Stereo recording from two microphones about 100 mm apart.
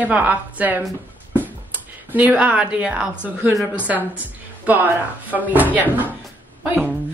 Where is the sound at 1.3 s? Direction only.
15° right (ahead or behind).